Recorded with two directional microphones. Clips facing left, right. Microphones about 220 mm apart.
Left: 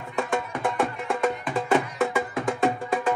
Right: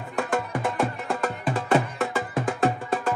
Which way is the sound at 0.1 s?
Centre (ahead or behind).